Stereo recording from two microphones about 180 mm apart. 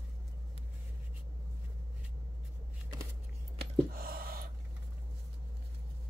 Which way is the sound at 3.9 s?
55° right (ahead or behind).